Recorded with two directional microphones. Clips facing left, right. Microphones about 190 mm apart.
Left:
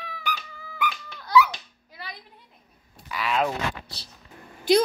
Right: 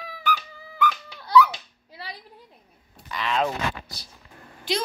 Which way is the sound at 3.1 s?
5° left (ahead or behind).